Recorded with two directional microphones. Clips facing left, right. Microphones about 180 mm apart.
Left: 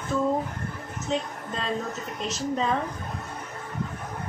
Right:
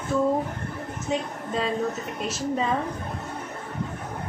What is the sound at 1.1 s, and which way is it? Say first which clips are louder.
Speech: right 1 dB; 10° right (ahead or behind).